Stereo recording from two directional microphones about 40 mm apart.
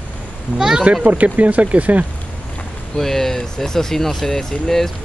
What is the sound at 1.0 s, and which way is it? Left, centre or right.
Speech, right.